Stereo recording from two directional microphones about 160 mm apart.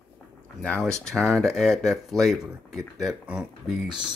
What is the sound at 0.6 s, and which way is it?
Speech, 5° left (ahead or behind).